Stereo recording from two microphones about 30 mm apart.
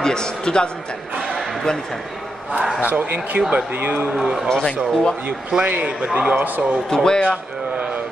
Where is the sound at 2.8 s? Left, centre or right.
Right.